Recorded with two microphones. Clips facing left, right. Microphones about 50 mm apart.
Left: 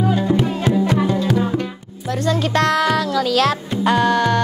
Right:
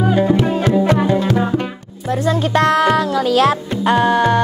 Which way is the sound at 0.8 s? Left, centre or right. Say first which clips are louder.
Right 3 dB; right.